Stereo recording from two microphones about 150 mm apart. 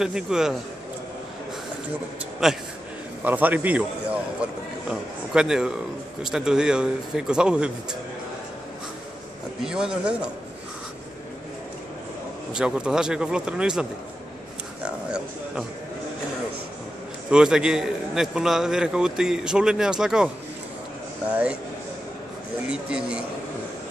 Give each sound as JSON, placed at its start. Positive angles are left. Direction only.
{"t": 0.0, "sound": "a man's voice", "side_deg": -5}
{"t": 2.4, "sound": "a man's voice", "side_deg": 0}
{"t": 9.6, "sound": "a man's voice", "side_deg": -5}
{"t": 12.5, "sound": "a man's voice", "side_deg": -5}
{"t": 14.9, "sound": "a sound", "side_deg": -5}
{"t": 17.3, "sound": "a man's voice", "side_deg": -5}
{"t": 21.3, "sound": "a man's voice", "side_deg": -10}
{"t": 22.7, "sound": "a man's voice", "side_deg": -5}